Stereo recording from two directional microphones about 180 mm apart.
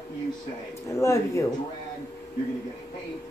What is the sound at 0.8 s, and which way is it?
Speech, 15° left (ahead or behind).